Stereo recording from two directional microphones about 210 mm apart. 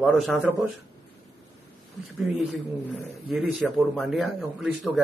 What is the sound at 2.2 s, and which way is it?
A man's voice, centre (ahead or behind).